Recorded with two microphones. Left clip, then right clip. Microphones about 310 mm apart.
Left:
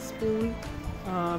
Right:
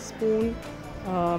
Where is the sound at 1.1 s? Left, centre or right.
Centre.